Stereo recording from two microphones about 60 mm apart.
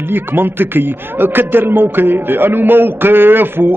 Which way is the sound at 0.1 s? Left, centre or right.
Right.